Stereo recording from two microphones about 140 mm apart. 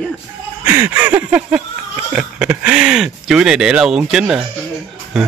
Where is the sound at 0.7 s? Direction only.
15° right (ahead or behind).